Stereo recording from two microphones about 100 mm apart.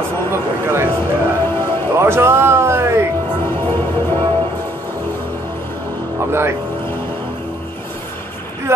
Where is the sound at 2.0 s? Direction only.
25° right (ahead or behind).